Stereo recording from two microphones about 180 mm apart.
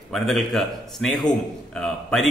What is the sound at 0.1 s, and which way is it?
A man's voice, centre (ahead or behind).